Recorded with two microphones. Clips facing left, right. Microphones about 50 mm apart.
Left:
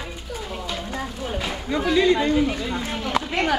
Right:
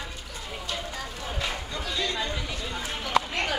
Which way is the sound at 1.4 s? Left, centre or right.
Centre.